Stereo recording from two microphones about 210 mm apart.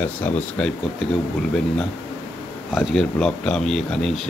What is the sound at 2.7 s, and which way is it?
Speech, centre (ahead or behind).